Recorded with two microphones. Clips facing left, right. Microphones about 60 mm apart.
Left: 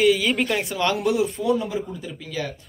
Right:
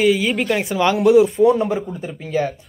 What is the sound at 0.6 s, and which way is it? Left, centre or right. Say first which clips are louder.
Speech: right 6 dB; centre.